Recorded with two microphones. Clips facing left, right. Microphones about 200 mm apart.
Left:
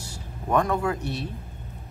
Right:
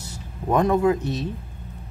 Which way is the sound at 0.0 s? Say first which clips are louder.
Right 4 dB; 20° right (ahead or behind).